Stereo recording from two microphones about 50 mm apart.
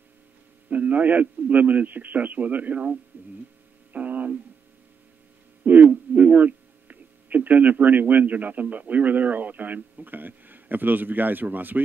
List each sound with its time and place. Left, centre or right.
0.7 s a man's voice: right
3.9 s a sound: right
5.6 s speech: right